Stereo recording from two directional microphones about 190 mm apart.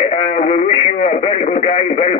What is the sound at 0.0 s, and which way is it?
Radio, 30° left (ahead or behind).